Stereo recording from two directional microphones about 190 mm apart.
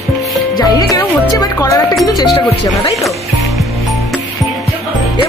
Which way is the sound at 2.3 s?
25° left (ahead or behind).